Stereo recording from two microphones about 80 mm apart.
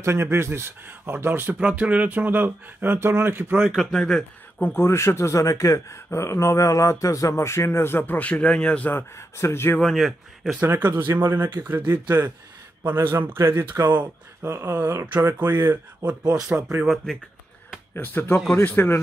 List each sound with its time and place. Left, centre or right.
0.0 s speech: right
1.6 s speech: centre
3.6 s speech: centre
3.9 s speech: centre
4.7 s speech: left; by 8.9 s centre
8.9 s speech: left
9.8 s speech: centre
10.6 s speech: right
16.2 s speech: right
16.8 s speech: centre
17.9 s speech: left